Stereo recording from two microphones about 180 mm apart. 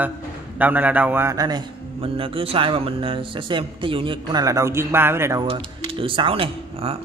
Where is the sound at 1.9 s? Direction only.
30° right (ahead or behind); by 5.4 s 15° right (ahead or behind).